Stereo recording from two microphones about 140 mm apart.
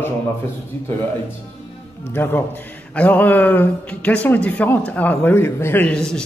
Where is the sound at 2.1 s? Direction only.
15° left (ahead or behind).